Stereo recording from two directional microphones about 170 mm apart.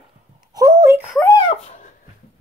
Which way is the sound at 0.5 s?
20° right (ahead or behind).